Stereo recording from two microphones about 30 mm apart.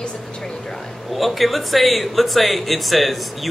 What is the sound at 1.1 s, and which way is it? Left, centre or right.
Speech, centre.